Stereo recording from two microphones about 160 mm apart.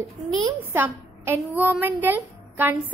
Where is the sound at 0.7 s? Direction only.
15° right (ahead or behind).